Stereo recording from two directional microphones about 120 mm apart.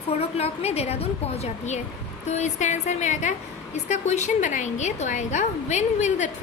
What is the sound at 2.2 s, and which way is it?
A woman's voice, 75° left (ahead or behind).